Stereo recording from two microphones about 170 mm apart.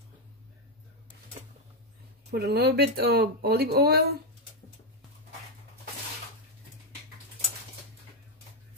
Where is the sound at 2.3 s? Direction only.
70° right (ahead or behind).